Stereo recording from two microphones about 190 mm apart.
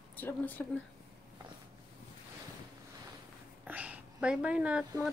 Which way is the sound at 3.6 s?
10° right (ahead or behind).